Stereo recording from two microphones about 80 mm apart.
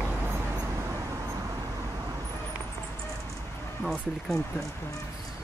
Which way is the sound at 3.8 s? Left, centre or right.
Centre.